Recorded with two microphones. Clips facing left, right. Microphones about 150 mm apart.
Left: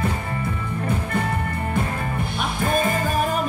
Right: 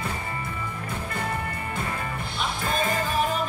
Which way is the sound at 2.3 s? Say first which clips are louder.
Left 5 dB; 50° left (ahead or behind).